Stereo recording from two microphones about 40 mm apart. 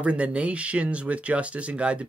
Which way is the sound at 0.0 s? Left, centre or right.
Right.